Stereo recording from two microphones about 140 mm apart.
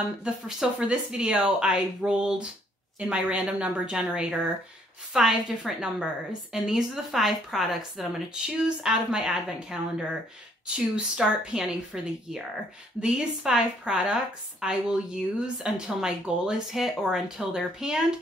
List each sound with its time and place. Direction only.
0.2 s a woman's voice: 5° right (ahead or behind)